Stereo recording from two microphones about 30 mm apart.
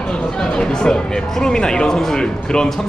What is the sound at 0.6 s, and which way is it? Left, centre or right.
Speech, left.